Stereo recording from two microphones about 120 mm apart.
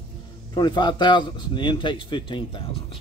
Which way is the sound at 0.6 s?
40° left (ahead or behind).